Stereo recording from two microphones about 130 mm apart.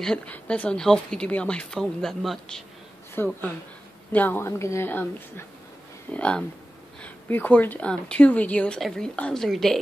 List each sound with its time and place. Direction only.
0.0 s speech: 5° left (ahead or behind)
3.2 s speech: 15° left (ahead or behind)
6.1 s speech: 10° left (ahead or behind)